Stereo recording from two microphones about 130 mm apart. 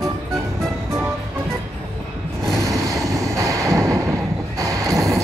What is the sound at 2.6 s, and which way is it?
Vehicle, 25° right (ahead or behind).